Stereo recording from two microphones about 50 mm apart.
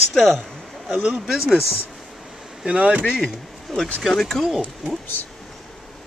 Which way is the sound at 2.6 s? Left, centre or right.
Centre.